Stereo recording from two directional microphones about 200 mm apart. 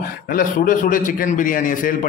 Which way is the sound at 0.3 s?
45° left (ahead or behind).